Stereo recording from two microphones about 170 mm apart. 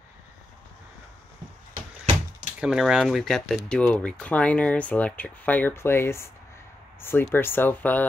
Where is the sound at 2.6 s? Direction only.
5° right (ahead or behind).